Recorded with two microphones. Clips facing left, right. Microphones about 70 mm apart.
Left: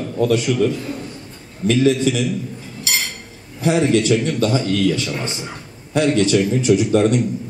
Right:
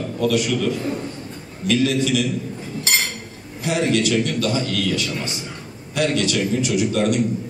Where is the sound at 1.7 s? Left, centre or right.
Left.